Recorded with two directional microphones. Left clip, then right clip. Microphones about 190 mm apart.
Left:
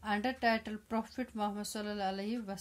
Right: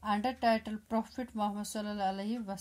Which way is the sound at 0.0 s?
5° right (ahead or behind).